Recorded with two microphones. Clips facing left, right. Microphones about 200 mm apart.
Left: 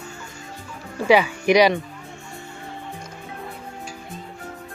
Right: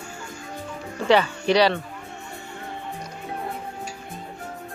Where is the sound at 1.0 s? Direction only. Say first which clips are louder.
Left 2 dB; 10° left (ahead or behind).